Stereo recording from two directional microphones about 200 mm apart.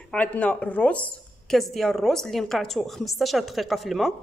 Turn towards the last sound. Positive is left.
turn(degrees=0)  # may be behind; listen again after turning